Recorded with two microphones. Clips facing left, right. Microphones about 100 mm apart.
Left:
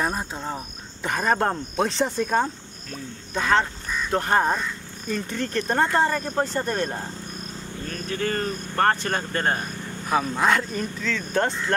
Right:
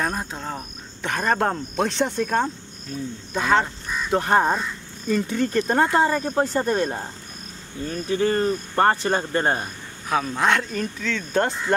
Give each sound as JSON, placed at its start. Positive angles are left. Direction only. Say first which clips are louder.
{"t": 0.0, "sound": "speech", "louder": "even", "side_deg": 0}
{"t": 8.1, "sound": "speech", "louder": "right 6 dB", "side_deg": -15}
{"t": 10.0, "sound": "speech", "louder": "even", "side_deg": 0}